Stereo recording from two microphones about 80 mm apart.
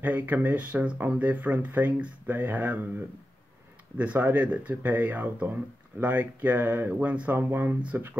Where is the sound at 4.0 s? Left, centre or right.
Right.